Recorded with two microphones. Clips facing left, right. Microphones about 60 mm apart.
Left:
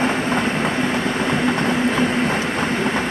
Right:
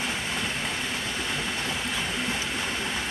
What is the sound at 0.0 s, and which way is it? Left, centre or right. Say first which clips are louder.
Vehicle: left 11 dB; left.